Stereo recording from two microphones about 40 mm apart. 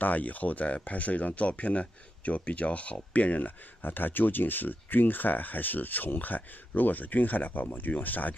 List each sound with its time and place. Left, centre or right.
0.0 s speech: left